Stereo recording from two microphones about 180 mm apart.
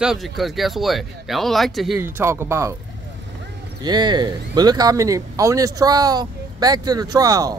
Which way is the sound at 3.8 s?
25° right (ahead or behind).